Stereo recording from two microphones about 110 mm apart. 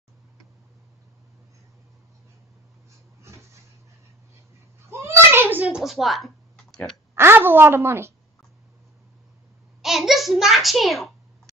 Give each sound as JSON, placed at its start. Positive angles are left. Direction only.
{"t": 4.8, "sound": "a sound", "side_deg": -20}
{"t": 5.8, "sound": "speech", "side_deg": 0}
{"t": 7.2, "sound": "a woman's voice", "side_deg": -20}
{"t": 9.8, "sound": "hands", "side_deg": 0}